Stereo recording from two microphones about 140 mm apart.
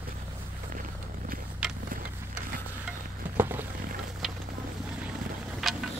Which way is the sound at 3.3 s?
15° right (ahead or behind).